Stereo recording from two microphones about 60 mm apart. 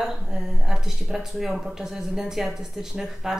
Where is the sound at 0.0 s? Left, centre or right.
Centre.